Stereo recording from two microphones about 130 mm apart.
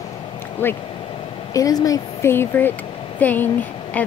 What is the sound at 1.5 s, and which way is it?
Speech, 25° left (ahead or behind).